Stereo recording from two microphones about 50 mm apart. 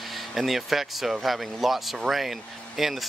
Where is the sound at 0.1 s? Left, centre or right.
Centre.